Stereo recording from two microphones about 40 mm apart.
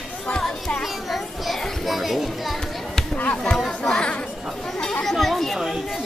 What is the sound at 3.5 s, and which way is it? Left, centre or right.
Chatter, centre.